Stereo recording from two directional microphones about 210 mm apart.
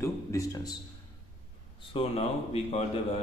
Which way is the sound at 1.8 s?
30° left (ahead or behind).